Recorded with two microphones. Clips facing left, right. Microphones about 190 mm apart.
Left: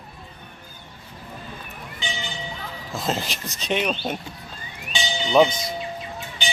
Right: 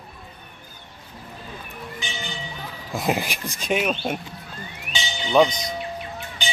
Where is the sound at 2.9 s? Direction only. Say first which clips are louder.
Right 3 dB; 15° right (ahead or behind).